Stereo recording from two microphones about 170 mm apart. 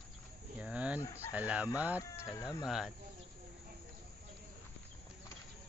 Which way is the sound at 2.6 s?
5° right (ahead or behind).